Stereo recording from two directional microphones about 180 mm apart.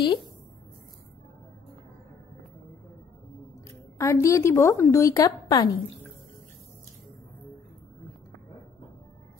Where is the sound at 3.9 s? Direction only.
15° left (ahead or behind).